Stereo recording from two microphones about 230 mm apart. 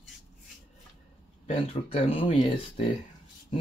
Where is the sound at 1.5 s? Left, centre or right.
Left.